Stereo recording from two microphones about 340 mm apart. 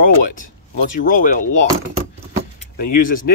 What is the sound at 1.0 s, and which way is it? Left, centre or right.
Speech, left.